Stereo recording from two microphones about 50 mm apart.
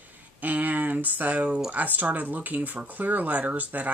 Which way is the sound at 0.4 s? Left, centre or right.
Right.